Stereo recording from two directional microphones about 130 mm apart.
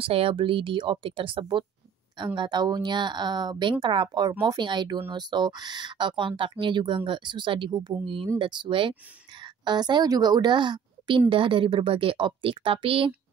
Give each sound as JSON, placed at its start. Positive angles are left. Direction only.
{"t": 0.0, "sound": "a woman's voice", "side_deg": -45}